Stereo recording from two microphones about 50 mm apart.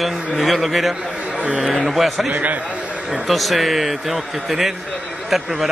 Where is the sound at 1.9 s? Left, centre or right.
Centre.